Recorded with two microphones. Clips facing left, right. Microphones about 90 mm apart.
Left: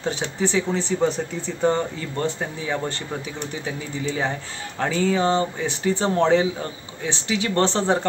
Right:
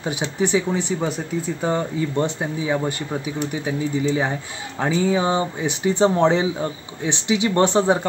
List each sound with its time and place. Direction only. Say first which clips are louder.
0.0 s speech: right 1 dB; 15° right (ahead or behind)
2.1 s speech: even; 15° right (ahead or behind)